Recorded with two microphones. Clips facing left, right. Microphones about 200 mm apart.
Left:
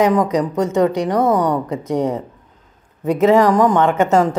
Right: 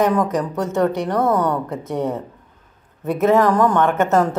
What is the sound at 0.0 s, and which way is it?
A woman's voice, 20° left (ahead or behind).